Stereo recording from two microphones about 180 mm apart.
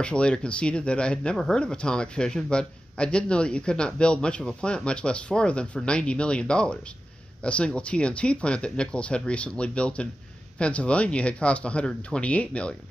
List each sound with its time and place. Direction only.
0.0 s speech: 5° left (ahead or behind)